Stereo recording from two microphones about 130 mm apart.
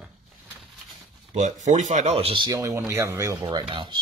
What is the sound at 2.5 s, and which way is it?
Speech, 25° right (ahead or behind).